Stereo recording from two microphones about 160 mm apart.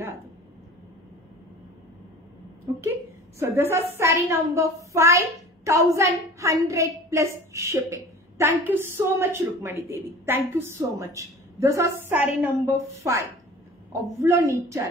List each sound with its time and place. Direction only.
2.7 s a woman's voice: 20° right (ahead or behind)